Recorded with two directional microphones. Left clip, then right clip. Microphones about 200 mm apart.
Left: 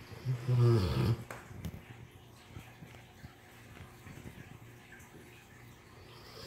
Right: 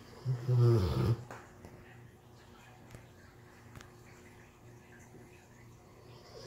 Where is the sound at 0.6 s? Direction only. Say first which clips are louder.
Even; centre (ahead or behind).